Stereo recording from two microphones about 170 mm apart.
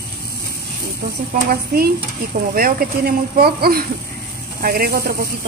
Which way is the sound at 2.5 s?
60° right (ahead or behind).